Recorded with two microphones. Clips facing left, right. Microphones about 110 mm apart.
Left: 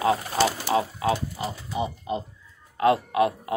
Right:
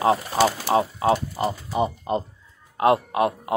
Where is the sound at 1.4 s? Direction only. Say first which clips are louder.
Right 6 dB; 55° right (ahead or behind).